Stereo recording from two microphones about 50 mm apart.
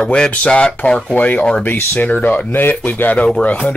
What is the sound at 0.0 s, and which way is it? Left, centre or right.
Speech, centre.